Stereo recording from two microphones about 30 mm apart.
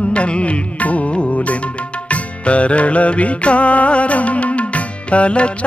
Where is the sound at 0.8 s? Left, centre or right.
Left.